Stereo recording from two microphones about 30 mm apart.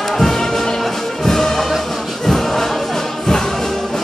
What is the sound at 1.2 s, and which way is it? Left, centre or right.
Music, centre.